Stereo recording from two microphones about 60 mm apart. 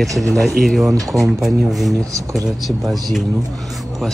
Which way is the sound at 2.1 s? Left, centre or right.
Right.